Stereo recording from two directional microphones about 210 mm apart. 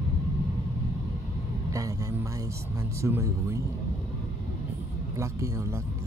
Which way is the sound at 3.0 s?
15° right (ahead or behind).